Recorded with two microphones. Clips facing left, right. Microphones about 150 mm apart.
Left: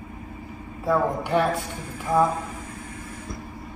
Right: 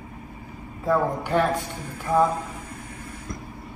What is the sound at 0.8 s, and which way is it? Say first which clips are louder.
Speech: even; 10° left (ahead or behind).